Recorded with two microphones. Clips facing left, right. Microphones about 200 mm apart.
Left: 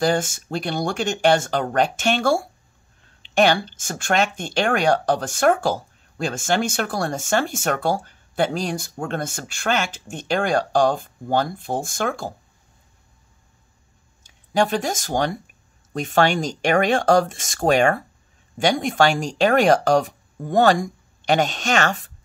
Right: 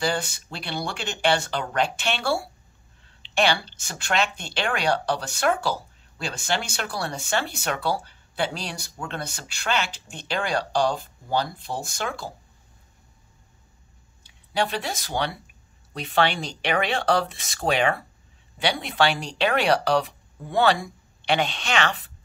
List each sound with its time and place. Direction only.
0.0 s speech: 45° left (ahead or behind)
14.2 s speech: 45° left (ahead or behind)